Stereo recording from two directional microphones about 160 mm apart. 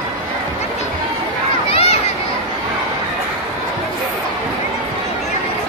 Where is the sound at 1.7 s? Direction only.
40° left (ahead or behind).